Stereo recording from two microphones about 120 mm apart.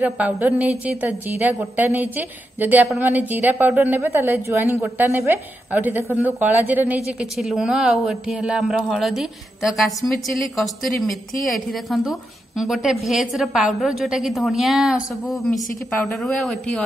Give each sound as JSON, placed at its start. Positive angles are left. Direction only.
{"t": 0.0, "sound": "a woman's voice", "side_deg": -15}